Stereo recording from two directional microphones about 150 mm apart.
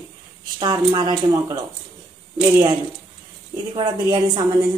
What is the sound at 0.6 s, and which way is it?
Speech, 30° right (ahead or behind).